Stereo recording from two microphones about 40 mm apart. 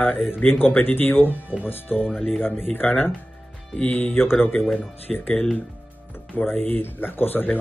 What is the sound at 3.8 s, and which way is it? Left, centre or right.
Speech, left.